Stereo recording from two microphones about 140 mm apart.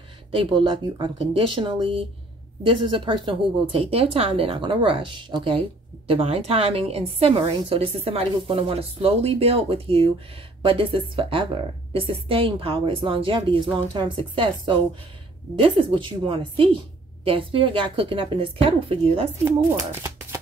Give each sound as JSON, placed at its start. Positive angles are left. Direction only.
{"t": 0.3, "sound": "speech", "side_deg": -40}
{"t": 19.4, "sound": "speech", "side_deg": -15}